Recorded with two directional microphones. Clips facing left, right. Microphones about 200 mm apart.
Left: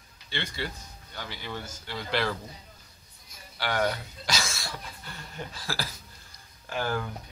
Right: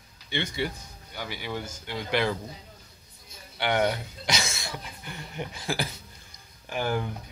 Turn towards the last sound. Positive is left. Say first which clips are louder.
# right 2 dB
turn(degrees=-15)  # may be behind; listen again after turning